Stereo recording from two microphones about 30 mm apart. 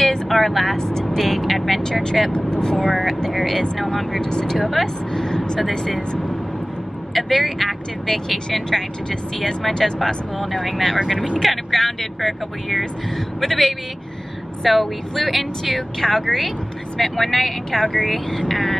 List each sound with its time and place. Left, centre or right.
0.3 s speech: centre
1.1 s vehicle: centre
2.3 s speech: left
2.8 s speech: centre
4.2 s speech: left
4.6 s speech: centre
5.1 s speech: centre
7.2 s speech: centre
10.4 s speech: centre